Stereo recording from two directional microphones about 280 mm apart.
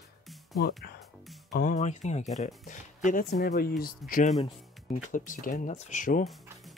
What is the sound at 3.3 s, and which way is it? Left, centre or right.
Speech, left.